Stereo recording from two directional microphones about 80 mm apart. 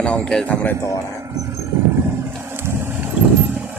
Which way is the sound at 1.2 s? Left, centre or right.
Right.